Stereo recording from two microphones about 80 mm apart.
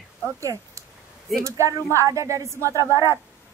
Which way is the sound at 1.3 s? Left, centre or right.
Right.